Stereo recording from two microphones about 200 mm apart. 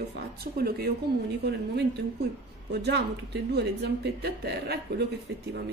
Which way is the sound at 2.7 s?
55° right (ahead or behind).